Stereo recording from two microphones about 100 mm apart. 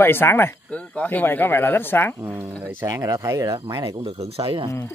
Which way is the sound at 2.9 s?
35° right (ahead or behind).